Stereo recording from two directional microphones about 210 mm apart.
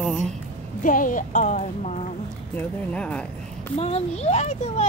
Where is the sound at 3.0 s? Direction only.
5° left (ahead or behind).